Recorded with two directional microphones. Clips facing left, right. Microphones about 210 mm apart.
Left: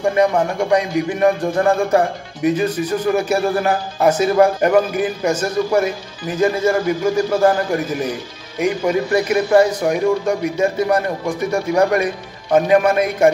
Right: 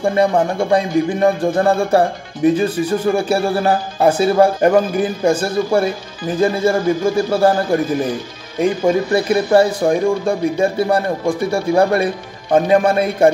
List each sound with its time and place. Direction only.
0.1 s a man's voice: 30° right (ahead or behind)
8.5 s a man's voice: 30° right (ahead or behind)